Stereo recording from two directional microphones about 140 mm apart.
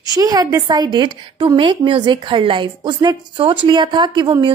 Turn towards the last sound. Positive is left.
turn(degrees=-35)  # may be behind; listen again after turning